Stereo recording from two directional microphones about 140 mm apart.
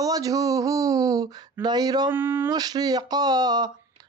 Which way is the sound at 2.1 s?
15° right (ahead or behind).